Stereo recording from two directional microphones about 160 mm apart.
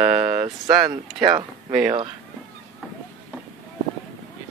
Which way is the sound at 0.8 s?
25° right (ahead or behind).